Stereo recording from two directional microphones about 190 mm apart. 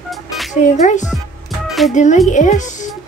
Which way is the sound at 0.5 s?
40° left (ahead or behind).